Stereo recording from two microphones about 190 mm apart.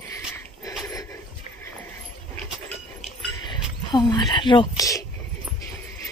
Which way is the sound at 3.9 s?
20° left (ahead or behind).